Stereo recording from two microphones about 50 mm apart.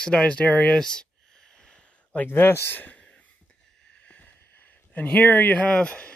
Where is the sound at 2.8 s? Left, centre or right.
Left.